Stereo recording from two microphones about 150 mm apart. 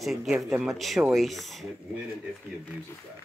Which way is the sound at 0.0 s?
Centre (ahead or behind).